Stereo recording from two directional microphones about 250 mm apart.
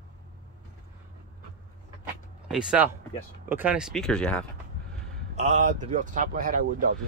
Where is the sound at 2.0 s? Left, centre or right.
Centre.